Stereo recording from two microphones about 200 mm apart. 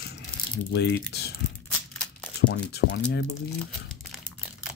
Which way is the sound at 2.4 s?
55° left (ahead or behind).